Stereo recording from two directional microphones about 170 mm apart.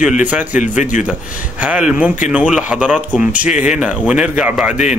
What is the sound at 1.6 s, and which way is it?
A man's voice, 5° right (ahead or behind).